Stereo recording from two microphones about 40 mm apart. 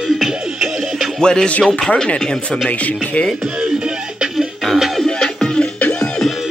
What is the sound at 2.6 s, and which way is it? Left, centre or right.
Speech, left.